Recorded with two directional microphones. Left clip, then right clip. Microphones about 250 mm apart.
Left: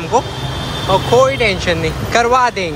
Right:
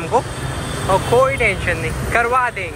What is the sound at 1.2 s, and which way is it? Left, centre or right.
Speech, left.